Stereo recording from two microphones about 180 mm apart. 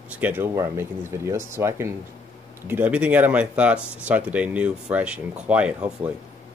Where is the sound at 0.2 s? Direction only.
10° right (ahead or behind).